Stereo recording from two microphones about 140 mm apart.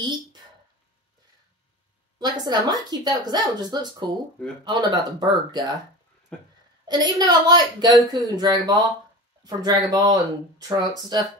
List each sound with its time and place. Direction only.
0.0 s a sound: 30° right (ahead or behind)
2.1 s a woman's voice: 25° right (ahead or behind)
6.3 s speech: 5° left (ahead or behind)
6.9 s a woman's voice: 25° right (ahead or behind)